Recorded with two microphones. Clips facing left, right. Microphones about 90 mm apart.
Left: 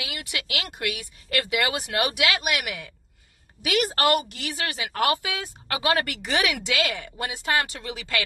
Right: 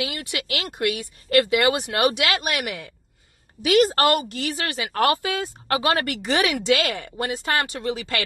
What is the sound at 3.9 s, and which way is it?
A woman's voice, 35° right (ahead or behind).